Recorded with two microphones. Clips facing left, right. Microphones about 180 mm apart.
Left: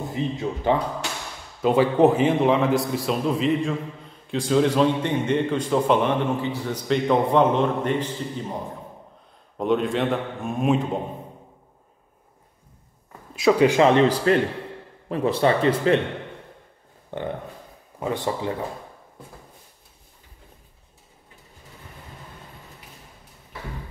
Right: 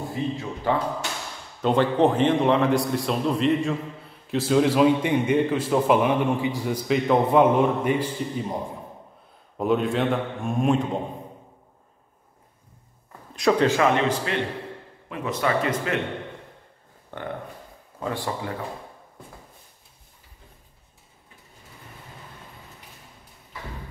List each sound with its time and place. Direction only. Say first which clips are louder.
0.2 s speech: left 3 dB; 20° left (ahead or behind)
1.6 s a man's voice: left 2 dB; 5° left (ahead or behind); by 8.5 s 10° right (ahead or behind)
9.6 s a man's voice: even; centre (ahead or behind)
13.4 s a man's voice: left 3 dB; 10° left (ahead or behind)
13.7 s speech: left 4 dB; 30° left (ahead or behind)
17.1 s speech: left 3 dB; 20° left (ahead or behind)